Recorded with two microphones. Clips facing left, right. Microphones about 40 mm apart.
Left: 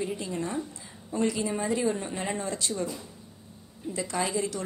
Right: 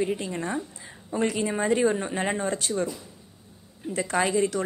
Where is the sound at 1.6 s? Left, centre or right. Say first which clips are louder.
Right 7 dB; right.